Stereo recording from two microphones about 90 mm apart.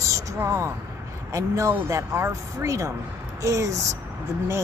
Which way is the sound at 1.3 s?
35° right (ahead or behind).